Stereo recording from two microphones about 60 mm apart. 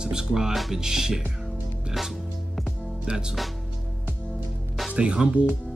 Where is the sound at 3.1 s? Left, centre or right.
Centre.